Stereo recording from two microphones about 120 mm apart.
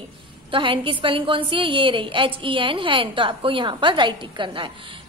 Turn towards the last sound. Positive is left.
turn(degrees=-40)  # may be behind; listen again after turning